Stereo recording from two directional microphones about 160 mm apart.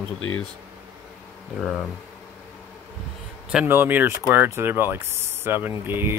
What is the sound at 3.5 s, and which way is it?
Speech, 15° right (ahead or behind).